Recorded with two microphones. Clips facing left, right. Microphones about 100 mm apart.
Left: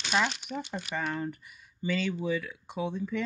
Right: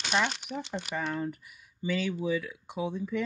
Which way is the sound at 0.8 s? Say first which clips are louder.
Even; 5° right (ahead or behind).